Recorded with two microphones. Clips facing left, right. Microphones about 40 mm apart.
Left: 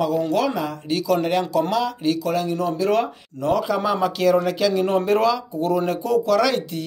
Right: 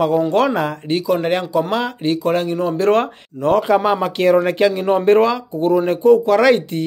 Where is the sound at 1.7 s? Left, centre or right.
Right.